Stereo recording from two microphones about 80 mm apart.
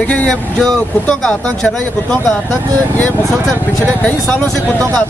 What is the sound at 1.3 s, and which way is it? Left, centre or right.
Speech, centre.